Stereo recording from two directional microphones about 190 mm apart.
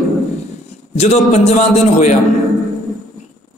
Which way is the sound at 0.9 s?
35° left (ahead or behind).